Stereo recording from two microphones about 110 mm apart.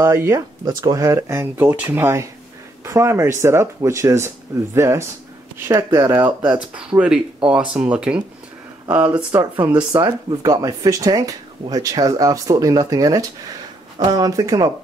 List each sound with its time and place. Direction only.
0.0 s speech: 30° right (ahead or behind)
6.2 s speech: 10° right (ahead or behind)
9.4 s speech: 40° right (ahead or behind)
10.4 s speech: 35° right (ahead or behind)